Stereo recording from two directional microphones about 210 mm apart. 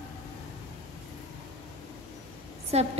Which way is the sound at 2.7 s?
30° right (ahead or behind).